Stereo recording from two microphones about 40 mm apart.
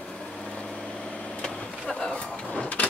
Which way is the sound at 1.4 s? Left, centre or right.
Centre.